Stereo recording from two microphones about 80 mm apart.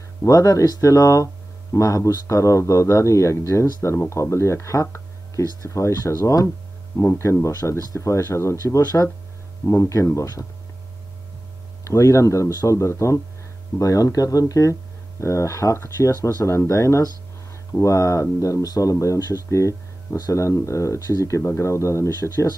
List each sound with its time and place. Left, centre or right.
0.2 s speech: left
11.8 s speech: left